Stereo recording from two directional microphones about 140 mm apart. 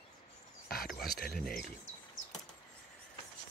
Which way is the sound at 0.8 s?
Centre (ahead or behind).